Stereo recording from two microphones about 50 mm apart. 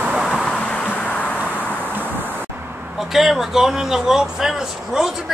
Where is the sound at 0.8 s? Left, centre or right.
Left.